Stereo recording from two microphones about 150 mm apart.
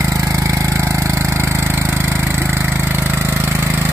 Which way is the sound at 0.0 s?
15° right (ahead or behind).